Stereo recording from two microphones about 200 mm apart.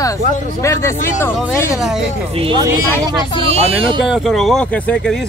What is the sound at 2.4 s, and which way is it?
Speech, 25° right (ahead or behind).